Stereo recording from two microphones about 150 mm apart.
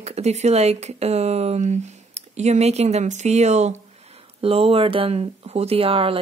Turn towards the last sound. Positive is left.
turn(degrees=-40)  # may be behind; listen again after turning